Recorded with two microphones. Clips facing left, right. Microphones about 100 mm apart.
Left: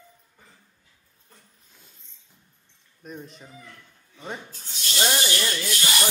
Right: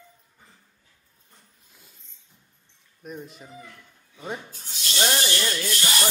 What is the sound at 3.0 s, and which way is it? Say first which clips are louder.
Speech: right 1 dB; 5° right (ahead or behind).